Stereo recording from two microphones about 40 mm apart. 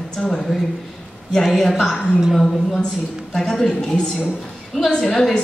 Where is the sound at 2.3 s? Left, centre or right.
Centre.